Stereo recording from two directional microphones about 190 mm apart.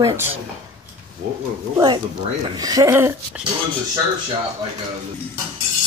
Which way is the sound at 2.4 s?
20° right (ahead or behind).